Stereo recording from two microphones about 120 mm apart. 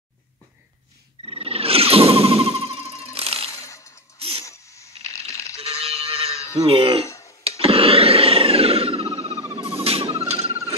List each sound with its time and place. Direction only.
1.2 s music: 55° right (ahead or behind)
3.2 s coin: 55° right (ahead or behind)
3.5 s coin: 25° left (ahead or behind)
4.2 s sneeze: 55° right (ahead or behind)
4.5 s coin: 25° left (ahead or behind)
5.6 s sheep: 55° right (ahead or behind)
6.5 s speech: 50° right (ahead or behind)
7.1 s cough: 25° left (ahead or behind)
7.4 s a sound: 55° right (ahead or behind)